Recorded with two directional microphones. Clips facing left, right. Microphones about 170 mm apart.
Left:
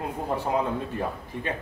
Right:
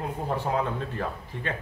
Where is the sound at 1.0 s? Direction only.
15° left (ahead or behind).